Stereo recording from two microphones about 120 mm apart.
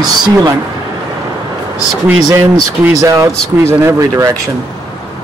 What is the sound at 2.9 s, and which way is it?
Speech, 25° right (ahead or behind).